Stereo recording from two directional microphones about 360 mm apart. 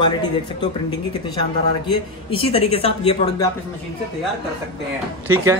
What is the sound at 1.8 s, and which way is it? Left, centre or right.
A man's voice, centre.